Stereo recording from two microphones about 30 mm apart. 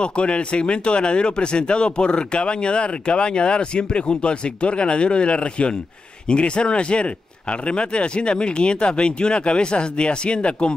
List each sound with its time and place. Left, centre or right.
0.0 s speech: left